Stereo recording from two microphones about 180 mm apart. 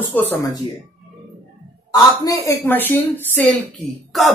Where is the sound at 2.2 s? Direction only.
15° left (ahead or behind).